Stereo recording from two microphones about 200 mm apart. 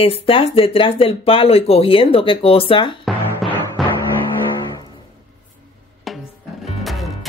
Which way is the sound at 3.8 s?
Centre (ahead or behind).